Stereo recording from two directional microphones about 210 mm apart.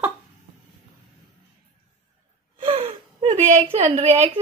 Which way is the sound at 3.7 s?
30° right (ahead or behind).